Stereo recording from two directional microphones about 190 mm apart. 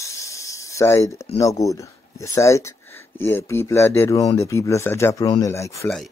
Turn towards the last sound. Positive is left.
turn(degrees=15)  # may be behind; listen again after turning